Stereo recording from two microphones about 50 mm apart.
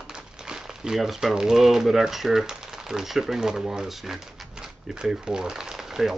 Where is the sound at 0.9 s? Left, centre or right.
Centre.